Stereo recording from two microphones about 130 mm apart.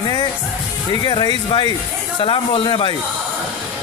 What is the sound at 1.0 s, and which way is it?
Speech, 35° left (ahead or behind).